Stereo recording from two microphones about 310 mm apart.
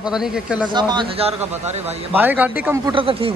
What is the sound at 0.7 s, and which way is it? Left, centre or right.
A man's voice, centre.